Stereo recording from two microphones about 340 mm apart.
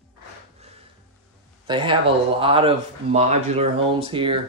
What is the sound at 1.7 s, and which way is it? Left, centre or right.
Speech, centre.